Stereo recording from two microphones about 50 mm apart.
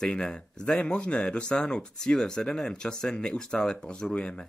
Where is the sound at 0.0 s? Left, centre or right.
Centre.